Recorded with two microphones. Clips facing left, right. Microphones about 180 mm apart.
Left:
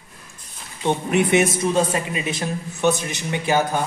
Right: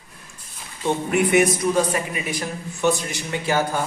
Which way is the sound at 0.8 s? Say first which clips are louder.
Left 1 dB; 25° left (ahead or behind).